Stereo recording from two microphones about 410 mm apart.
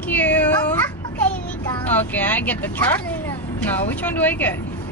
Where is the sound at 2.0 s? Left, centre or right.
Centre.